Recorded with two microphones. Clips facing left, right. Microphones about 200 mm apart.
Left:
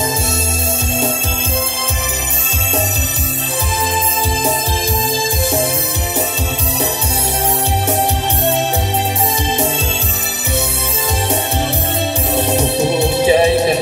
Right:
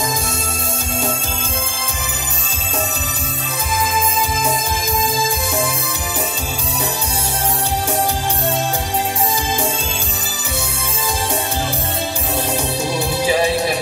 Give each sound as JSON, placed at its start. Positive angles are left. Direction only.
{"t": 12.4, "sound": "music", "side_deg": 25}